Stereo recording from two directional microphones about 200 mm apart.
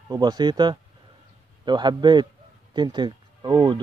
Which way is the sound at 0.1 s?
20° right (ahead or behind).